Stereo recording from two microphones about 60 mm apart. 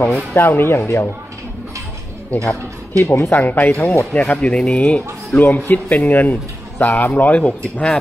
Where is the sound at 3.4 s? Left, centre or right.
Left.